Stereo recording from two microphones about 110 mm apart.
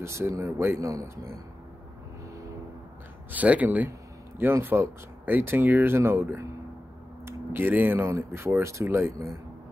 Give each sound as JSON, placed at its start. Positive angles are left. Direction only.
{"t": 0.0, "sound": "speech", "side_deg": -25}
{"t": 3.3, "sound": "speech", "side_deg": -15}